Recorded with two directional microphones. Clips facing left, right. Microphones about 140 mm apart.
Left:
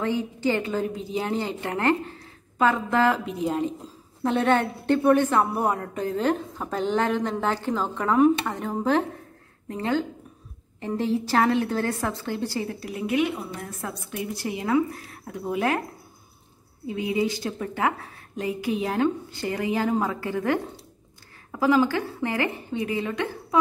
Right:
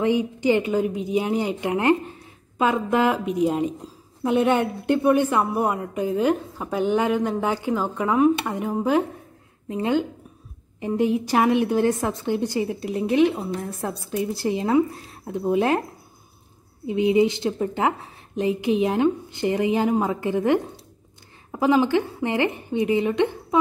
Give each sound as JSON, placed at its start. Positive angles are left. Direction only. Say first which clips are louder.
{"t": 0.0, "sound": "a woman's voice", "louder": "right 4 dB", "side_deg": -15}
{"t": 12.9, "sound": "a woman's voice", "louder": "right 5 dB", "side_deg": -30}
{"t": 16.8, "sound": "a woman's voice", "louder": "right 7 dB", "side_deg": -20}